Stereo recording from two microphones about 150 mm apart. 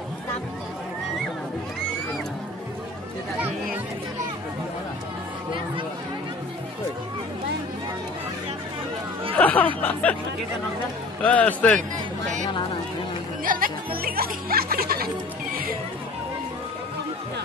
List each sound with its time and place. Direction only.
9.4 s speech: 10° left (ahead or behind)
11.2 s a man's voice: 10° left (ahead or behind)
13.4 s speech: 70° right (ahead or behind); by 15.0 s 90° right